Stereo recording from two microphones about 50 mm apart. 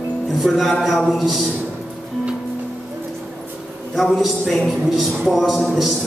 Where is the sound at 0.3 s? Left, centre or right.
Centre.